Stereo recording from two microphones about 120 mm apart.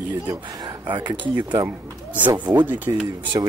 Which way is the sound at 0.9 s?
40° right (ahead or behind).